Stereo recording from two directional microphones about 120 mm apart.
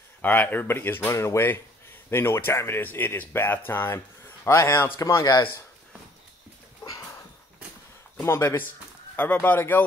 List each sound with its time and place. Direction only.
0.2 s speech: 15° left (ahead or behind)
8.2 s speech: 20° left (ahead or behind)